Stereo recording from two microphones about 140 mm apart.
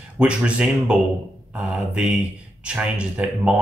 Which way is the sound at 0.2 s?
10° right (ahead or behind).